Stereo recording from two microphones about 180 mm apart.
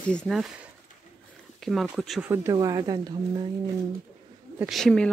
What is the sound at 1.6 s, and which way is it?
Speech, centre (ahead or behind).